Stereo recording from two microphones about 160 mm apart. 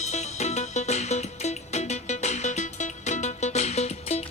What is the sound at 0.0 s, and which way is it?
Music, 45° left (ahead or behind).